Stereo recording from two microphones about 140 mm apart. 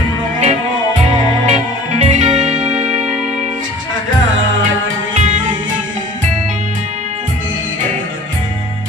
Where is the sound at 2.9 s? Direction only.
10° right (ahead or behind).